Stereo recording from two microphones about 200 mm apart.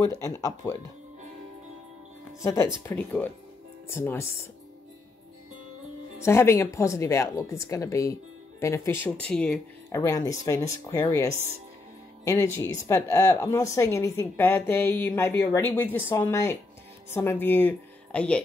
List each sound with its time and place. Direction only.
0.1 s a woman's voice: 15° left (ahead or behind)
2.4 s a woman's voice: 15° left (ahead or behind)
6.2 s a woman's voice: 15° left (ahead or behind)
9.8 s a woman's voice: 15° left (ahead or behind)